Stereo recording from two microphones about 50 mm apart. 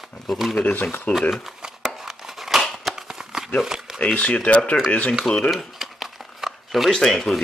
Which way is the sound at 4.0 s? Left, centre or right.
Left.